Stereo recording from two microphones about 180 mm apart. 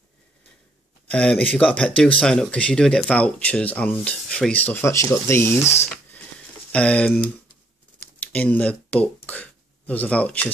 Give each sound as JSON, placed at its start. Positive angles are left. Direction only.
{"t": 1.0, "sound": "speech", "side_deg": 5}
{"t": 6.7, "sound": "speech", "side_deg": 5}